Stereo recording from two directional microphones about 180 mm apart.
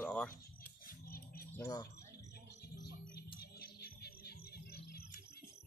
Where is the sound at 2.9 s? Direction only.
60° left (ahead or behind).